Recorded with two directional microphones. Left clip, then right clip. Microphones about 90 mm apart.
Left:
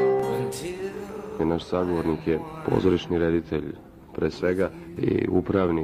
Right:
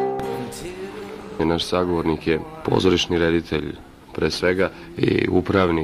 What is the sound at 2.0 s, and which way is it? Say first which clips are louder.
Speech: right 4 dB; 40° right (ahead or behind).